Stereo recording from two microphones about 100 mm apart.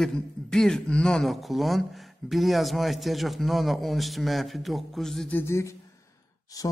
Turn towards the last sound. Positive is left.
turn(degrees=35)  # may be behind; listen again after turning